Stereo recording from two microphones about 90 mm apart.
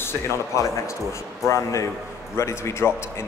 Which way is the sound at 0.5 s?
35° left (ahead or behind).